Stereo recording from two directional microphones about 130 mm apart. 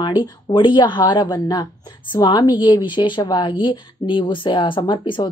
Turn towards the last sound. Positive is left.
turn(degrees=35)  # may be behind; listen again after turning